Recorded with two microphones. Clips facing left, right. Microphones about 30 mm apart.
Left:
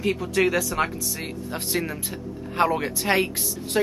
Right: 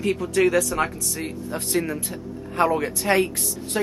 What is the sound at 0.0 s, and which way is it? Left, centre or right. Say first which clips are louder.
Speech: right 2 dB; centre.